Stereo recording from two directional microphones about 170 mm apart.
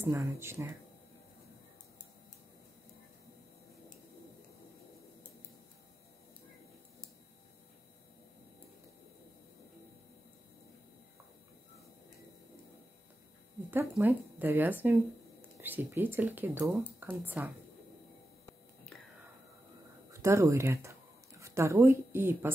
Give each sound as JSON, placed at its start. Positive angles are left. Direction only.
{"t": 0.0, "sound": "speech", "side_deg": -15}
{"t": 13.7, "sound": "speech", "side_deg": -15}
{"t": 20.1, "sound": "speech", "side_deg": -15}